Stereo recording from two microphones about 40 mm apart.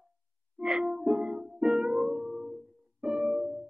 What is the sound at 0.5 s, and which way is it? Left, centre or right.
Music, centre.